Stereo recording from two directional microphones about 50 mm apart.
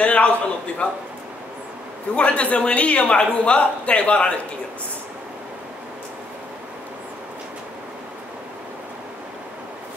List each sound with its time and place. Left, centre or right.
0.0 s a man's voice: left
2.1 s a man's voice: left